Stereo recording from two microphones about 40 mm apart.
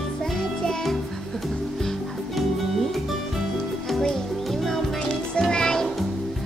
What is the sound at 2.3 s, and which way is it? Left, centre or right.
Music, centre.